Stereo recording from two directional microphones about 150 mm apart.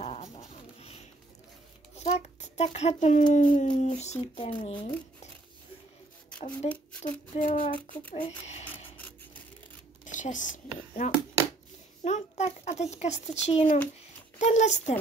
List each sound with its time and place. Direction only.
0.0 s dog: 40° left (ahead or behind)
2.0 s a child's voice: 45° left (ahead or behind)
6.6 s a child's voice: 45° left (ahead or behind)
7.3 s child singing: 65° left (ahead or behind)
10.0 s speech: 55° left (ahead or behind)
12.0 s a sound: 50° left (ahead or behind)
14.4 s a child's voice: 50° left (ahead or behind)